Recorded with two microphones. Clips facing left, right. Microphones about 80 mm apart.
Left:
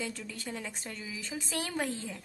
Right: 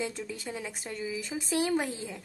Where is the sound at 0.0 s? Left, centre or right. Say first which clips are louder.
Right 4 dB; centre.